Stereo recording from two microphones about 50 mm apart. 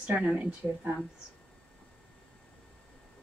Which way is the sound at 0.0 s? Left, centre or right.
Right.